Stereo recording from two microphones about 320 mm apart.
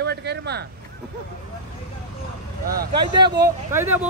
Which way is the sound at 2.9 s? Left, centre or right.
Right.